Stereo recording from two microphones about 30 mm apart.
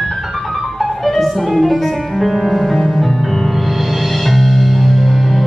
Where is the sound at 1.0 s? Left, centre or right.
Centre.